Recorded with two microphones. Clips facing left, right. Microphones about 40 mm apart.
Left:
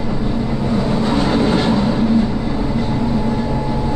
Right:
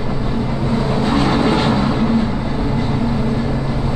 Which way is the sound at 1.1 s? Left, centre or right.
Centre.